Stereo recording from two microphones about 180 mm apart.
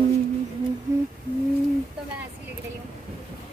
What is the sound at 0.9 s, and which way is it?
Speech, 15° right (ahead or behind).